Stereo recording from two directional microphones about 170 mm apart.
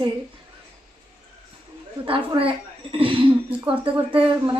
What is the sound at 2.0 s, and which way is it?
A woman's voice, 30° right (ahead or behind).